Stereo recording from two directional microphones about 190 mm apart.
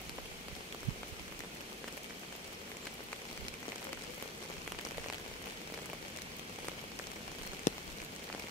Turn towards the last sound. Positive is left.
turn(degrees=40)  # may be behind; listen again after turning